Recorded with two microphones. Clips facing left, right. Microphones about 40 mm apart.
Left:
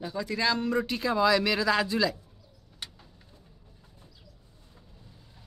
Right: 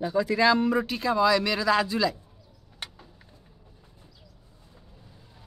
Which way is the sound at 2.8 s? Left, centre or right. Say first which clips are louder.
Right 3 dB; right.